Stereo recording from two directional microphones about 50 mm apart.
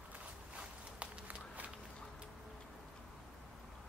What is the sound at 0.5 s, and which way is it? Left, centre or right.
Walk, right.